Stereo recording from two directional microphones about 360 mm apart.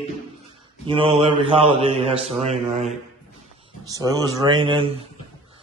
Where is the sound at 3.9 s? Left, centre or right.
Centre.